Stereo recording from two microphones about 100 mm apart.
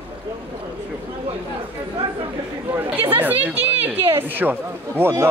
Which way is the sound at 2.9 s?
20° right (ahead or behind).